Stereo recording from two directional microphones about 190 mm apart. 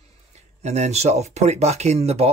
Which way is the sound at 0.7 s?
35° right (ahead or behind).